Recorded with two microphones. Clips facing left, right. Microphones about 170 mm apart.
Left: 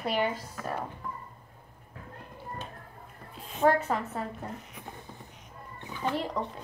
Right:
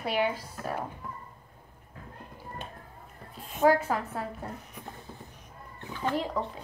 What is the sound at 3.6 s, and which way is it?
Speech, 5° right (ahead or behind).